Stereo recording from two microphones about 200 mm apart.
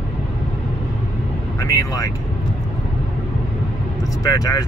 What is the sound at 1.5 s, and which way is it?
Speech, 15° left (ahead or behind).